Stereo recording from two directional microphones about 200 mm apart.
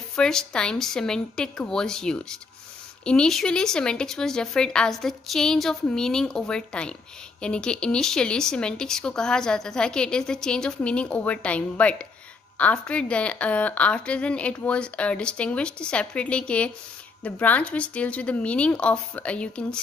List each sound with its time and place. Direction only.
0.1 s speech: 5° left (ahead or behind)